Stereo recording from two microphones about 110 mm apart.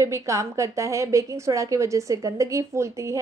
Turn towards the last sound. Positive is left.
turn(degrees=-25)  # may be behind; listen again after turning